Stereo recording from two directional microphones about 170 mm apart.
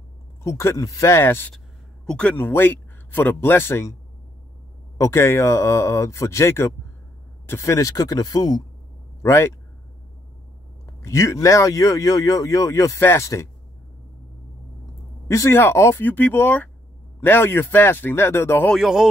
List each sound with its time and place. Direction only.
0.4 s speech: 15° left (ahead or behind)
4.9 s speech: 15° left (ahead or behind)
11.0 s speech: 15° left (ahead or behind)
15.2 s speech: 20° left (ahead or behind)
18.7 s speech: centre (ahead or behind)